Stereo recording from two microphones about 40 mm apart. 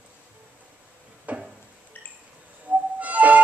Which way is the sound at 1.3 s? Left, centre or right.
Right.